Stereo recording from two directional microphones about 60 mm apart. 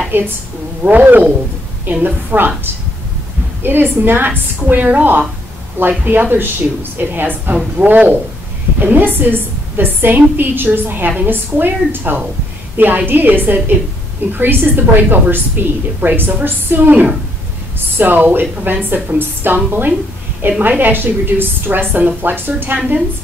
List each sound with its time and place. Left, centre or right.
0.1 s a woman's voice: right